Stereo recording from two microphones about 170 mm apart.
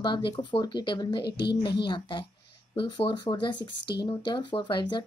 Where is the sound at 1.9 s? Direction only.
30° left (ahead or behind).